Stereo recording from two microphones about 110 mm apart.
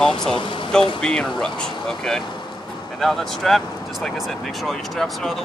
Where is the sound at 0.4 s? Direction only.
50° left (ahead or behind).